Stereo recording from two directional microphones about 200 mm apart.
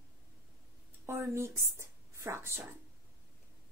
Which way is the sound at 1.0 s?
10° right (ahead or behind).